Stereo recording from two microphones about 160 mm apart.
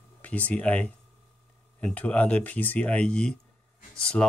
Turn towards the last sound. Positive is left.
turn(degrees=5)  # may be behind; listen again after turning